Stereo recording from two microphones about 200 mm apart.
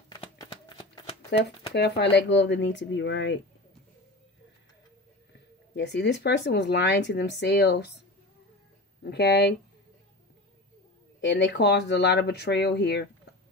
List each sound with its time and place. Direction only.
0.4 s a sound: 25° left (ahead or behind)
1.7 s speech: 55° left (ahead or behind)
5.8 s speech: 60° left (ahead or behind)
9.0 s speech: 55° left (ahead or behind)
11.1 s speech: 60° left (ahead or behind)